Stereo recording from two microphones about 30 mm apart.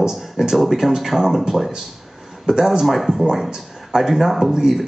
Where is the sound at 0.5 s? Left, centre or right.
Centre.